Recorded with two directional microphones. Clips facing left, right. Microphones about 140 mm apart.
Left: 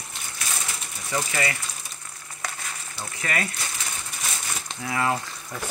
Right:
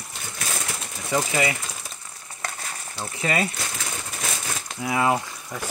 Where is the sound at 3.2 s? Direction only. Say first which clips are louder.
Right 5 dB; 25° right (ahead or behind).